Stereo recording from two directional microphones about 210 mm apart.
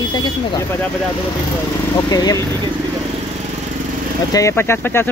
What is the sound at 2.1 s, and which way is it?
Speech, 15° left (ahead or behind).